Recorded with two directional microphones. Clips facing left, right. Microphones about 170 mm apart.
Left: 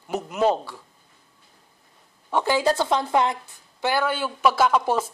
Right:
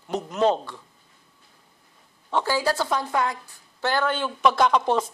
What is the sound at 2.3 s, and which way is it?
A woman's voice, 15° left (ahead or behind).